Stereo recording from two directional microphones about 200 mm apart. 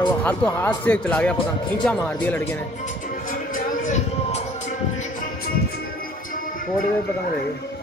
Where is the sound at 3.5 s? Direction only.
40° left (ahead or behind).